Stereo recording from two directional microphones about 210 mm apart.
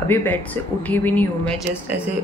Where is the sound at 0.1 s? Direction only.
10° left (ahead or behind).